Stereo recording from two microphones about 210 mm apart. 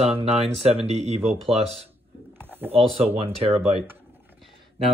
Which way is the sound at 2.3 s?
10° right (ahead or behind).